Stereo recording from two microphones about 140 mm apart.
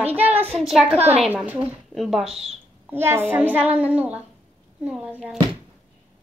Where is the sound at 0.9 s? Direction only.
50° right (ahead or behind).